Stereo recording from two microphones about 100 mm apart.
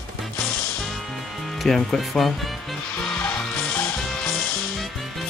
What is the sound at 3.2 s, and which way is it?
Music, 10° left (ahead or behind).